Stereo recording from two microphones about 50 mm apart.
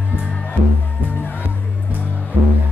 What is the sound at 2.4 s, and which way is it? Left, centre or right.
Music, right.